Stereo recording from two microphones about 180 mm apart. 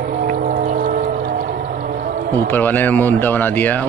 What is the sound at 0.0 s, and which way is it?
Music, 50° right (ahead or behind).